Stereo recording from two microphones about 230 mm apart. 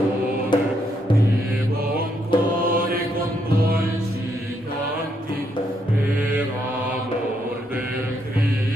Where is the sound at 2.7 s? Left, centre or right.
Right.